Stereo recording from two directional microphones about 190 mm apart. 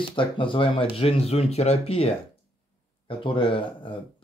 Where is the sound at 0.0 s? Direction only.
25° left (ahead or behind).